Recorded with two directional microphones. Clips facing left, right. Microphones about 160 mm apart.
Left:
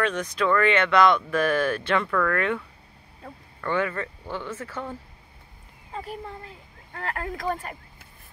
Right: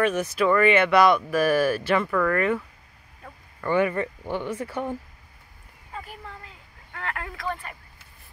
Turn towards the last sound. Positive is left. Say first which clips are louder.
# left 3 dB
turn(degrees=40)  # may be behind; listen again after turning